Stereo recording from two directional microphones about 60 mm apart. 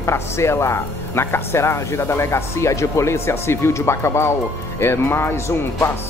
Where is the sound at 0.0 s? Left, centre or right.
Left.